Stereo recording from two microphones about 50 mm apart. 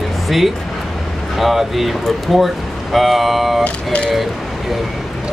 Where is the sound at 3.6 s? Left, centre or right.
Left.